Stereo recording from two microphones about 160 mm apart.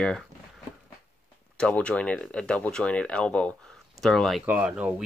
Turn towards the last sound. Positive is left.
turn(degrees=-10)  # may be behind; listen again after turning